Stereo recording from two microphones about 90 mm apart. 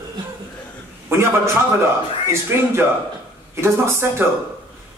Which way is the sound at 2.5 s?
25° right (ahead or behind).